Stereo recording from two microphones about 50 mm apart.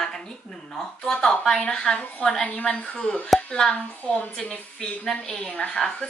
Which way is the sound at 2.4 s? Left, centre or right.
Left.